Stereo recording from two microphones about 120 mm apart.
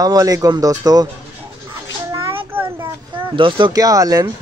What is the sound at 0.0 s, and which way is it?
Speech, 30° right (ahead or behind).